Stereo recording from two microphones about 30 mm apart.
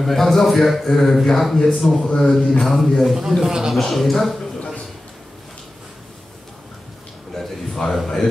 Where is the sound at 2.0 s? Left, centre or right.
Left.